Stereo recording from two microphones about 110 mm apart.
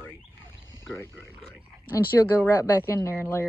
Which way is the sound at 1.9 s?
25° left (ahead or behind).